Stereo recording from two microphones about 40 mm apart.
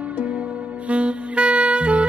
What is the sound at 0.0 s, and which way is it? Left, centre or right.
Music, right.